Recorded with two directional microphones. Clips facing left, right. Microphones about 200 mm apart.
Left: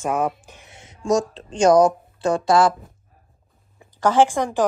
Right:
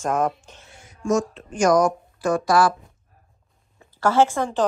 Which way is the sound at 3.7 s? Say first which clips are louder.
Left 1 dB; 15° left (ahead or behind).